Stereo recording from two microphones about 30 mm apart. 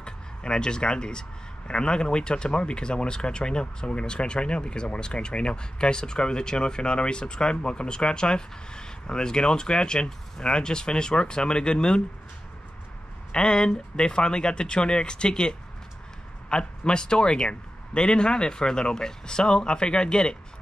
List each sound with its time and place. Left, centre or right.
0.0 s speech: left
13.3 s speech: left